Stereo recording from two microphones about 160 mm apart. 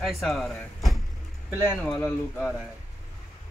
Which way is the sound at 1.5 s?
15° left (ahead or behind).